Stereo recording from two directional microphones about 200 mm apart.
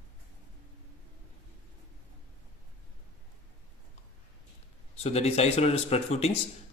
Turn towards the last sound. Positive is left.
turn(degrees=30)  # may be behind; listen again after turning